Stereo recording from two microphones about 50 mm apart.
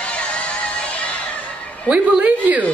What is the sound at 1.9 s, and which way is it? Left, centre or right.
Speech, right.